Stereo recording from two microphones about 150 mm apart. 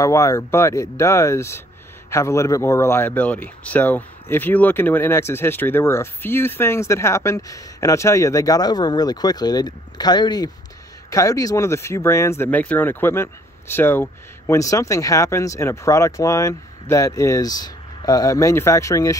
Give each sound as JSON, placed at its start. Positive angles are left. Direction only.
{"t": 0.0, "sound": "speech", "side_deg": 20}